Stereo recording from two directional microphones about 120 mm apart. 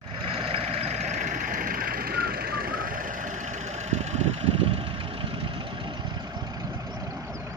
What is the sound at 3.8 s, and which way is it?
Vehicle, 65° right (ahead or behind).